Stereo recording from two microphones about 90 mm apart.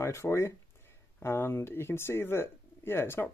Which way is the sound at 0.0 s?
30° left (ahead or behind).